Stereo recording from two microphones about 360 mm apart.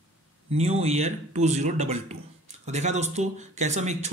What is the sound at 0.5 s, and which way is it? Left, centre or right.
Speech, centre.